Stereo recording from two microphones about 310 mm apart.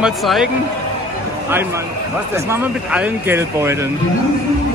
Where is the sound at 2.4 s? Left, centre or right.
Centre.